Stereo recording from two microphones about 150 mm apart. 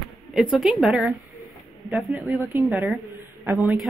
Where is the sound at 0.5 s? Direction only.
Centre (ahead or behind).